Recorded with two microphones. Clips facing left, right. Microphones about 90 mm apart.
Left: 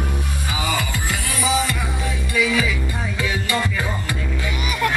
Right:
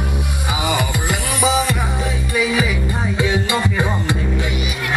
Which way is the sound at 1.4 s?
20° right (ahead or behind).